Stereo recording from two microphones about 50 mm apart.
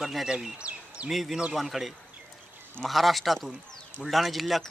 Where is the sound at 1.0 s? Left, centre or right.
Centre.